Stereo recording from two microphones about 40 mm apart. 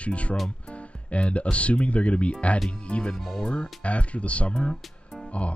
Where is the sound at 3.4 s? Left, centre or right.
Left.